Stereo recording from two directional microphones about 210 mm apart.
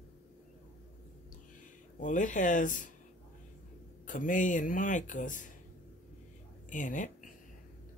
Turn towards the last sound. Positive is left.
turn(degrees=35)  # may be behind; listen again after turning